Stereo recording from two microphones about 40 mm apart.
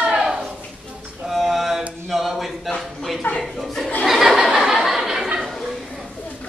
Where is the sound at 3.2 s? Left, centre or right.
Left.